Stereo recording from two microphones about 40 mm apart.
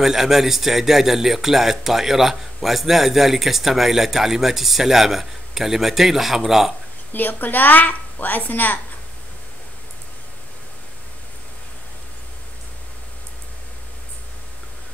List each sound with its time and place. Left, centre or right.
0.0 s speech: centre
7.1 s a woman's voice: left